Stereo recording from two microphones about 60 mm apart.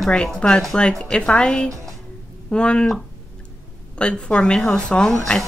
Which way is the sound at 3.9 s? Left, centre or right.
Centre.